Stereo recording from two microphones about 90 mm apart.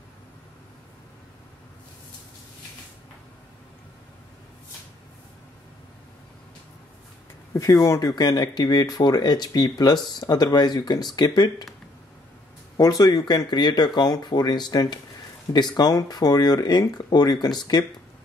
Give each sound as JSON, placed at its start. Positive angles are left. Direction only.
{"t": 7.5, "sound": "speech", "side_deg": 40}
{"t": 12.7, "sound": "speech", "side_deg": 40}